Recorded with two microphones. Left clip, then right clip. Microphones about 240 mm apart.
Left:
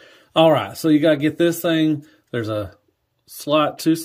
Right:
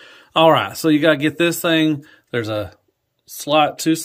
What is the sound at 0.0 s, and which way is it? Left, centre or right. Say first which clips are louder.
Speech: right 2 dB; centre.